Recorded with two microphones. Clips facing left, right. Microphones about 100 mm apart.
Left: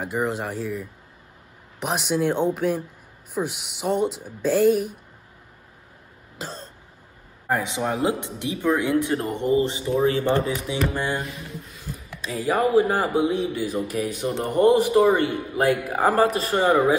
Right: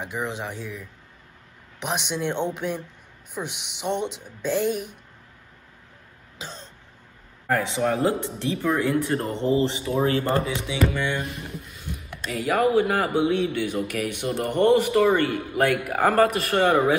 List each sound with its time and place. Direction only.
0.0 s speech: centre (ahead or behind)
6.3 s throat clearing: centre (ahead or behind)
7.4 s speech: 20° left (ahead or behind)
10.7 s a man's voice: 35° left (ahead or behind)
12.3 s a man's voice: 30° left (ahead or behind)